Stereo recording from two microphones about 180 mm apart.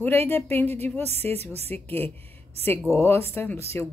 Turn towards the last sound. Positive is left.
turn(degrees=15)  # may be behind; listen again after turning